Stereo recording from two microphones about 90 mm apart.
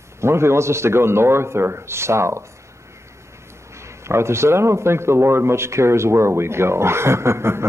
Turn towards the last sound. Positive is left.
turn(degrees=-30)  # may be behind; listen again after turning